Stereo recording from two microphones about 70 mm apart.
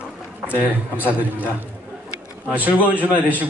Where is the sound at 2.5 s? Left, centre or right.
Right.